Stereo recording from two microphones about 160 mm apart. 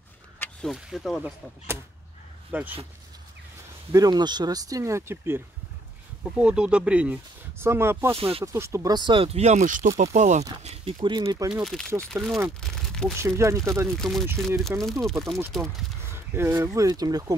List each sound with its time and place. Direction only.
0.4 s speech: 5° left (ahead or behind)
2.5 s speech: 10° right (ahead or behind)
3.9 s speech: 25° right (ahead or behind)
8.2 s speech: 35° right (ahead or behind)
8.5 s speech: 15° right (ahead or behind); by 10.4 s 45° right (ahead or behind)
10.6 s speech: 35° right (ahead or behind)
11.6 s speech: centre (ahead or behind)
12.5 s a sound: 5° left (ahead or behind)
13.2 s speech: 20° right (ahead or behind)
13.9 s speech: centre (ahead or behind)
14.2 s speech: 15° right (ahead or behind)
14.8 s speech: centre (ahead or behind)
16.0 s speech: 15° right (ahead or behind)